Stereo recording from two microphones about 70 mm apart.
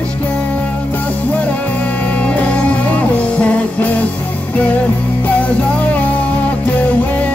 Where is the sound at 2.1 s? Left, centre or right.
Left.